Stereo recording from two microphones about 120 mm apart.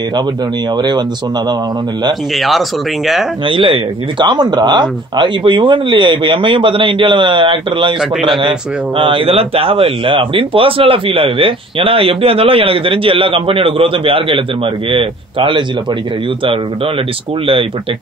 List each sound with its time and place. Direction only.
0.7 s speech: 40° right (ahead or behind)
2.3 s a man's voice: centre (ahead or behind)
3.4 s speech: 45° right (ahead or behind)
8.0 s a man's voice: centre (ahead or behind)
8.4 s speech: 40° right (ahead or behind)